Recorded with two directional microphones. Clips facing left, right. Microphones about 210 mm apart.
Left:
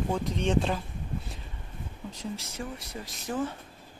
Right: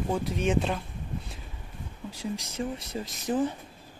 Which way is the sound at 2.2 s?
20° right (ahead or behind).